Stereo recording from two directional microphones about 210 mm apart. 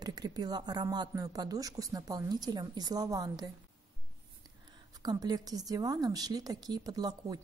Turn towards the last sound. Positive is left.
turn(degrees=-20)  # may be behind; listen again after turning